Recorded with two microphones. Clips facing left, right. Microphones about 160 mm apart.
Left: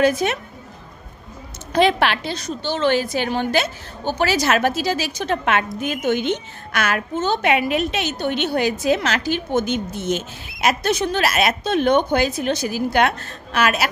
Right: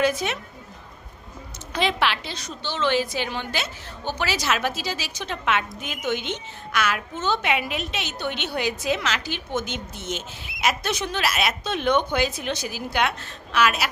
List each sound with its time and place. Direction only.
0.0 s a woman's voice: 50° left (ahead or behind)
1.7 s a woman's voice: 50° left (ahead or behind)